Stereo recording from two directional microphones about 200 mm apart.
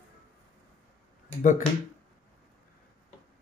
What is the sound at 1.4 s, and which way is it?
Speech, 40° left (ahead or behind).